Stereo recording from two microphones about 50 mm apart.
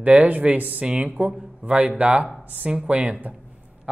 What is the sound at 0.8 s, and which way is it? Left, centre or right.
A man's voice, right.